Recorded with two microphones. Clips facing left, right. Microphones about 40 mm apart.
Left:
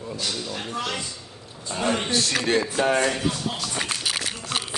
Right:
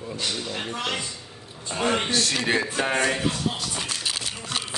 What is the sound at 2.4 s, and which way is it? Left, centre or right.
Speech, centre.